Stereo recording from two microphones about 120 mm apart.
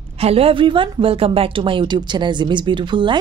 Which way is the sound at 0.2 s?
55° right (ahead or behind).